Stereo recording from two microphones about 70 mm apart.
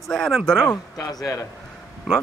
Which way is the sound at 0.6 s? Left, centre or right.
Left.